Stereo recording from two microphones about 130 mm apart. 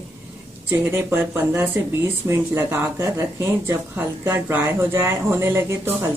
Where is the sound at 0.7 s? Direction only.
20° right (ahead or behind).